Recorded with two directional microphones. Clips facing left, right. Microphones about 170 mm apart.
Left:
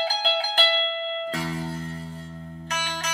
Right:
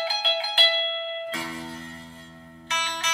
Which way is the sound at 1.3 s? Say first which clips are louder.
Left 4 dB; 40° left (ahead or behind).